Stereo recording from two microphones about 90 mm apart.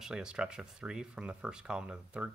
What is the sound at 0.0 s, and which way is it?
Speech, 10° right (ahead or behind).